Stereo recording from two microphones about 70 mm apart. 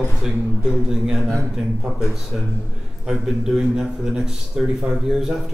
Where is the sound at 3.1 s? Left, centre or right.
Centre.